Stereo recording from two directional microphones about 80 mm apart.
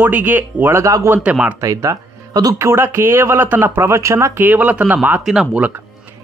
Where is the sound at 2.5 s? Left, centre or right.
Right.